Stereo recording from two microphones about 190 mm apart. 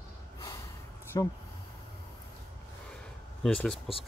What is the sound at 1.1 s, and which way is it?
Speech, 20° left (ahead or behind).